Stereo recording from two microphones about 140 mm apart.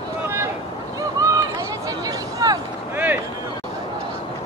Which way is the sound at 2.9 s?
10° right (ahead or behind).